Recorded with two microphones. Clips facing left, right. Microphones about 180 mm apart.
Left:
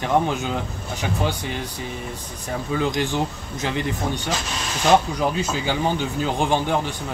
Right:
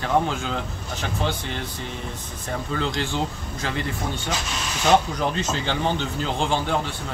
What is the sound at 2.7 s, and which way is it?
A man's voice, 15° left (ahead or behind).